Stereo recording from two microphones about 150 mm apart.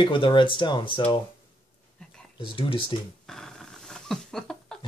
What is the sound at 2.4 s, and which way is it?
Speech, 35° left (ahead or behind).